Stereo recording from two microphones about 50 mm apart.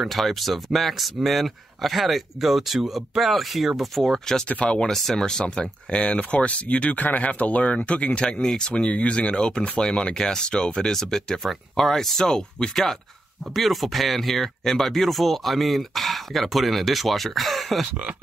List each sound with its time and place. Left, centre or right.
0.0 s speech: centre
4.5 s speech: left
4.8 s speech: centre
8.7 s speech: left; by 17.8 s centre